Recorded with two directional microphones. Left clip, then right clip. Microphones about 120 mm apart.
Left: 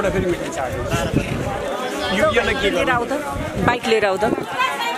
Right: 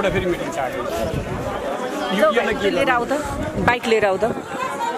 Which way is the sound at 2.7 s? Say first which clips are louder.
Even; 20° right (ahead or behind).